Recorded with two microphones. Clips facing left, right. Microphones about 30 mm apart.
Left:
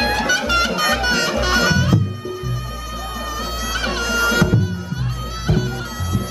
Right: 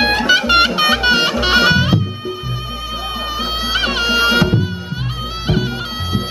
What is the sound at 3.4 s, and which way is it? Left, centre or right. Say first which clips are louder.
Music: right 6 dB; right.